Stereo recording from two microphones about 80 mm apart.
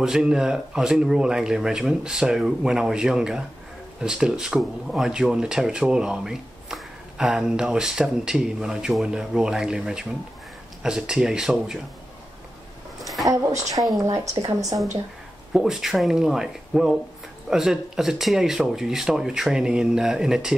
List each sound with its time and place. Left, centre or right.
0.0 s speech: centre
13.3 s a woman's voice: right
15.5 s speech: centre